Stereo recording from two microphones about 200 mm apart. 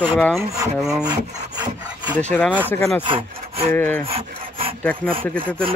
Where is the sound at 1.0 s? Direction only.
20° right (ahead or behind).